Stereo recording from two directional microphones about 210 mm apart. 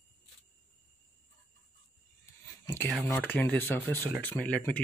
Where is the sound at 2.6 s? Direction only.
10° left (ahead or behind).